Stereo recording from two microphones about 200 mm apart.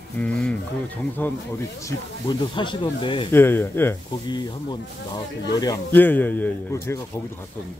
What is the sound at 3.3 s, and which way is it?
Speech, 10° left (ahead or behind).